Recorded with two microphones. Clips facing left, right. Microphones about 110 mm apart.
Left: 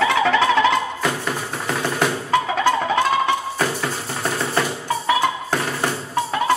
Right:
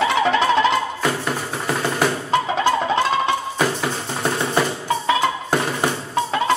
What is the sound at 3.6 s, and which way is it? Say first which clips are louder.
Music: right 2 dB; 10° right (ahead or behind).